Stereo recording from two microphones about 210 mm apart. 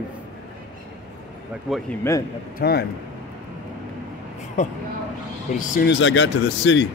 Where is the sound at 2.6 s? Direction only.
50° left (ahead or behind).